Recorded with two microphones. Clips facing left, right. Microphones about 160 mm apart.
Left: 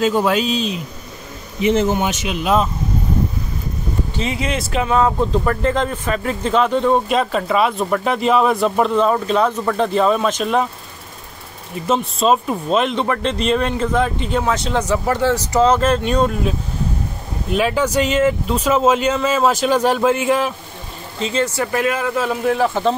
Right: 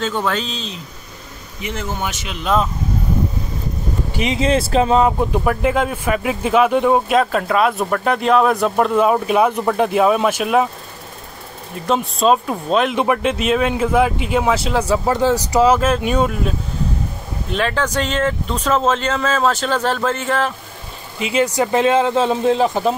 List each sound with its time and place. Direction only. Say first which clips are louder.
0.0 s speech: left 5 dB; 10° left (ahead or behind)
1.6 s speech: left 9 dB; 20° left (ahead or behind)
4.1 s speech: right 4 dB; 15° right (ahead or behind)
4.4 s speech: right 8 dB; 30° right (ahead or behind)
5.0 s a man's voice: even; 15° right (ahead or behind)
11.7 s a man's voice: even; centre (ahead or behind)
12.9 s speech: right 2 dB; 10° right (ahead or behind)
17.5 s speech: left 3 dB; 10° left (ahead or behind)
21.2 s speech: right 2 dB; 10° right (ahead or behind)
21.7 s a man's voice: right 5 dB; 25° right (ahead or behind)